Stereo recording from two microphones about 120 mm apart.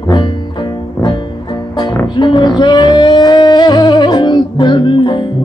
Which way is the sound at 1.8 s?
40° left (ahead or behind).